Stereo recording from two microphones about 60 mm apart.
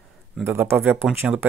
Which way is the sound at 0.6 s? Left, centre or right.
Right.